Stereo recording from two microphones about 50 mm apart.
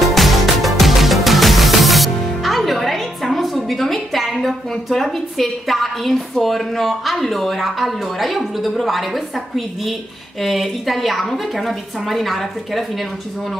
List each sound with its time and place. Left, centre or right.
0.0 s music: centre
10.4 s a woman's voice: centre